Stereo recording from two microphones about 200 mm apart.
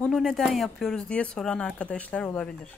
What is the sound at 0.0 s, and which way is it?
Speech, centre (ahead or behind).